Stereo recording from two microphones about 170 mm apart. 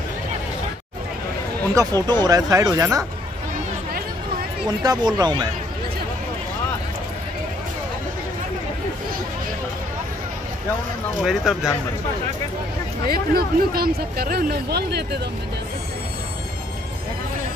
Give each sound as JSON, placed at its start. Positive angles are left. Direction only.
{"t": 1.8, "sound": "speech", "side_deg": -25}
{"t": 4.6, "sound": "speech", "side_deg": -25}
{"t": 11.2, "sound": "speech", "side_deg": 0}
{"t": 13.1, "sound": "speech", "side_deg": -65}